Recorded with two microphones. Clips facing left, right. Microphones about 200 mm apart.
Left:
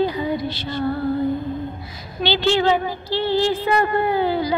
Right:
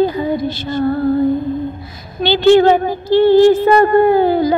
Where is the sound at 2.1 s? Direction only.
50° right (ahead or behind).